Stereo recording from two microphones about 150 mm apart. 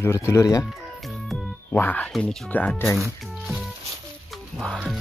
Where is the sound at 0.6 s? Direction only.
Centre (ahead or behind).